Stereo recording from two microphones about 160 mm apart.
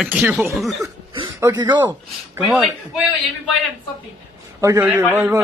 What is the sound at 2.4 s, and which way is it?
Speech, 5° right (ahead or behind).